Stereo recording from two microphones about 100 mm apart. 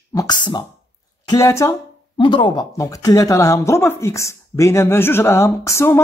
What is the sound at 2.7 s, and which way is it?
Speech, 35° left (ahead or behind).